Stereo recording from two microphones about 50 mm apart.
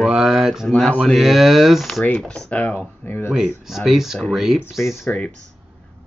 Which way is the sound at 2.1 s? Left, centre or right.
Left.